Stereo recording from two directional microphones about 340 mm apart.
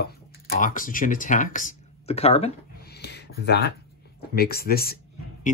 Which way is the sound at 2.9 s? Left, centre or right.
Left.